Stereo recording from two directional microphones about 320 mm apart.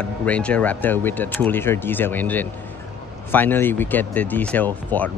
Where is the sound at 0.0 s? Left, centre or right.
Centre.